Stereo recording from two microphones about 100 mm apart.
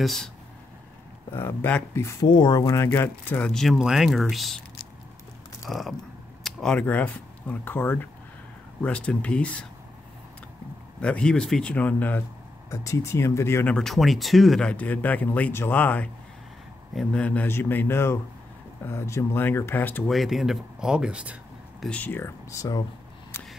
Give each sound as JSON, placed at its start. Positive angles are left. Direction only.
{"t": 0.0, "sound": "speech", "side_deg": 5}
{"t": 1.3, "sound": "speech", "side_deg": 25}
{"t": 2.0, "sound": "speech", "side_deg": 30}
{"t": 2.2, "sound": "speech", "side_deg": 50}
{"t": 2.6, "sound": "speech", "side_deg": 30}
{"t": 3.5, "sound": "speech", "side_deg": 0}
{"t": 5.7, "sound": "speech", "side_deg": 0}
{"t": 11.0, "sound": "speech", "side_deg": 10}
{"t": 12.6, "sound": "speech", "side_deg": 30}
{"t": 13.7, "sound": "speech", "side_deg": 0}
{"t": 17.1, "sound": "speech", "side_deg": 15}
{"t": 20.1, "sound": "speech", "side_deg": 0}
{"t": 21.7, "sound": "speech", "side_deg": 10}